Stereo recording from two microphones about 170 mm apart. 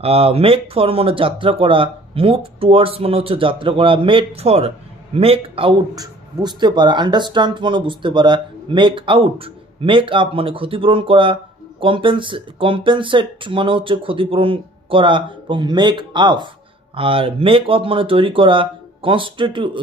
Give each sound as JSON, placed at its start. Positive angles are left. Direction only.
{"t": 0.0, "sound": "a man's voice", "side_deg": -35}